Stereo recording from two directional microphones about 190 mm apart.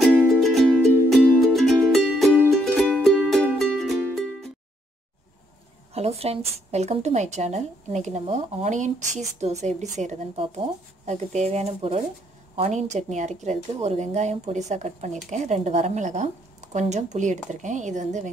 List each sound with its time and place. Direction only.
0.0 s music: centre (ahead or behind)
5.9 s a woman's voice: 35° right (ahead or behind)